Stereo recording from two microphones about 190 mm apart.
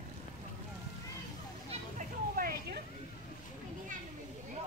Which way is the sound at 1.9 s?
50° right (ahead or behind).